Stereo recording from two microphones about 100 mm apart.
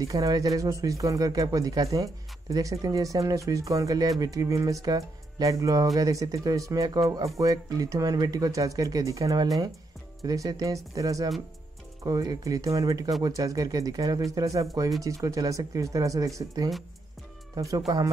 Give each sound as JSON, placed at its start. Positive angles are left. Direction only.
{"t": 0.0, "sound": "speech", "side_deg": -35}